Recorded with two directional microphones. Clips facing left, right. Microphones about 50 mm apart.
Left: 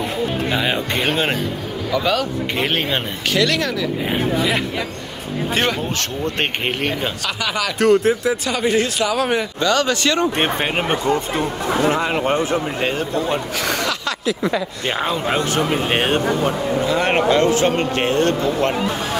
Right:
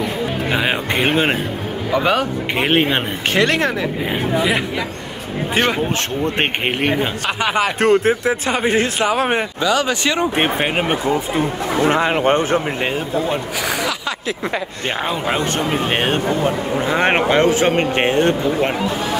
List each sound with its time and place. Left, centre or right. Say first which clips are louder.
0.5 s speech: right 1 dB; right
5.5 s a man's voice: right 3 dB; right
9.6 s speech: left 1 dB; centre
12.0 s a man's voice: right 3 dB; right
12.8 s speech: right 1 dB; centre
14.2 s a man's voice: left 4 dB; right
15.0 s speech: even; centre
16.8 s speech: right 2 dB; right